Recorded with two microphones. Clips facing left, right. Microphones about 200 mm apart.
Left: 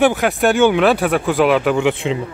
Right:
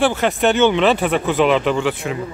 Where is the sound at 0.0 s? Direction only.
15° left (ahead or behind).